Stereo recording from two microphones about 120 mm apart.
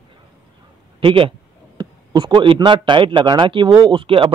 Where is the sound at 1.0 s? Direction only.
45° right (ahead or behind).